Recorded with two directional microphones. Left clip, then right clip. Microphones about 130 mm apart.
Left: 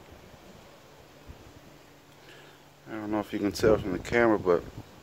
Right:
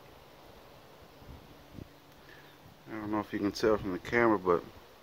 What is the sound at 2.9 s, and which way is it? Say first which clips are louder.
Speech: left 3 dB; 15° left (ahead or behind).